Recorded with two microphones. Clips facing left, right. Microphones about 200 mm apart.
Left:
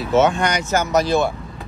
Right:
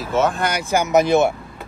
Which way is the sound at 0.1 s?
Centre (ahead or behind).